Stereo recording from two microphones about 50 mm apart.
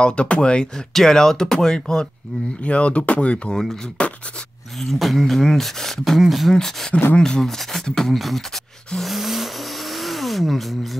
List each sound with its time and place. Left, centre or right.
0.0 s speech: left
2.6 s speech: left
4.0 s a sound: left
4.7 s speech: centre
8.9 s vehicle: centre